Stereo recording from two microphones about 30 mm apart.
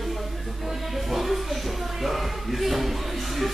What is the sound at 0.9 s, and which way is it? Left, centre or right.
Music, centre.